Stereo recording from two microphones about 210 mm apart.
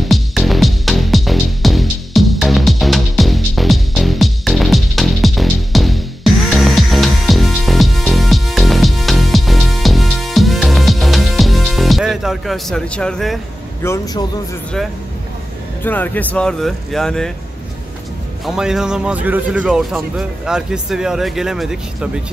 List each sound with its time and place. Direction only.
0.0 s music: centre (ahead or behind)
13.8 s a man's voice: 15° left (ahead or behind)
15.8 s a man's voice: 10° left (ahead or behind)
18.4 s a man's voice: centre (ahead or behind)